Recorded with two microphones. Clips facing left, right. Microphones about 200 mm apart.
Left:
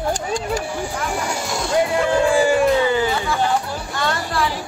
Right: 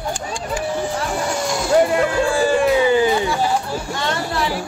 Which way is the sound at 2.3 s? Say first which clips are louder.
Left 1 dB; 15° left (ahead or behind).